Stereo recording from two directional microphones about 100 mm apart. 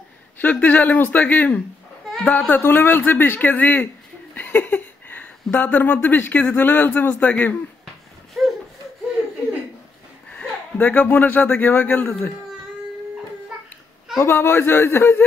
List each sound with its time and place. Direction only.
0.4 s speech: 15° left (ahead or behind)
10.3 s a man's voice: 15° left (ahead or behind)
14.2 s a man's voice: 25° left (ahead or behind)